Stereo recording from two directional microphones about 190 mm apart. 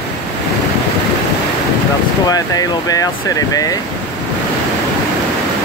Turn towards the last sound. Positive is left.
turn(degrees=20)  # may be behind; listen again after turning